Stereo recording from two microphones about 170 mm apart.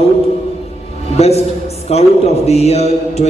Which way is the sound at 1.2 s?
40° left (ahead or behind).